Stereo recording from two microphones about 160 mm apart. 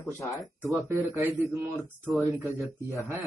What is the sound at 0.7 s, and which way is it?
Speech, 20° right (ahead or behind).